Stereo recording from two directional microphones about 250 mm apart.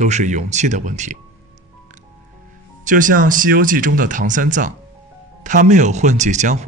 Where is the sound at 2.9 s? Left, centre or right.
Right.